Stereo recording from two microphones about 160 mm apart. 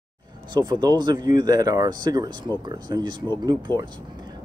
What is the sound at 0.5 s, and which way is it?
Speech, 25° right (ahead or behind).